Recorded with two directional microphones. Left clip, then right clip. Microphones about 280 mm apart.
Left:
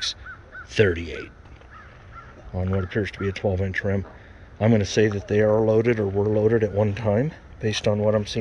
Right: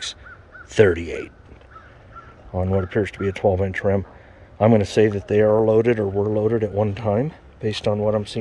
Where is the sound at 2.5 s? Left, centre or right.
Centre.